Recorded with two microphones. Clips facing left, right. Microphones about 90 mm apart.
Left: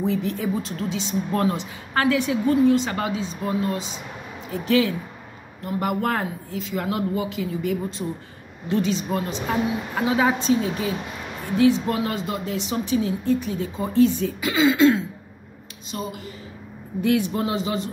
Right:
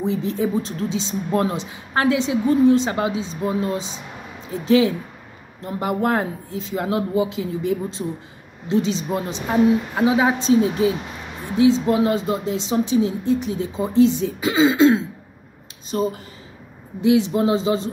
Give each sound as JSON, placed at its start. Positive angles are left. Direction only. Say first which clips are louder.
{"t": 0.0, "sound": "a woman's voice", "louder": "right 2 dB", "side_deg": -25}
{"t": 8.0, "sound": "speech", "louder": "right 2 dB", "side_deg": 0}
{"t": 8.6, "sound": "a woman's voice", "louder": "right 2 dB", "side_deg": -25}
{"t": 10.4, "sound": "a woman's voice", "louder": "right 5 dB", "side_deg": -25}
{"t": 15.9, "sound": "speech", "louder": "right 8 dB", "side_deg": -35}
{"t": 17.0, "sound": "a woman's voice", "louder": "right 5 dB", "side_deg": -20}